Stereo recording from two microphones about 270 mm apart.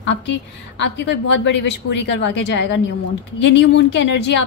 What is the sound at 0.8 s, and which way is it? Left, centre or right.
Speech, left.